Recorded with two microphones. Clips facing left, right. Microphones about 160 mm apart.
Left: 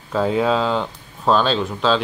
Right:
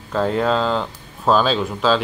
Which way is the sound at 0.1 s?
Centre (ahead or behind).